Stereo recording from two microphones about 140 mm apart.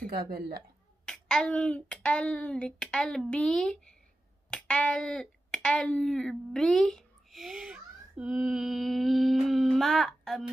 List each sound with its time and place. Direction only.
0.0 s a woman's voice: 90° right
1.0 s a sound: 5° left (ahead or behind)
4.5 s speech: 5° left (ahead or behind)